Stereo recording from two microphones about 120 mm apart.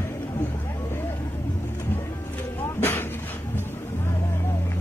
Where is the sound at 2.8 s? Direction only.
20° left (ahead or behind).